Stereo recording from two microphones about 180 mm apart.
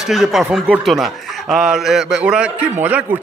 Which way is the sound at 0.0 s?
Centre (ahead or behind).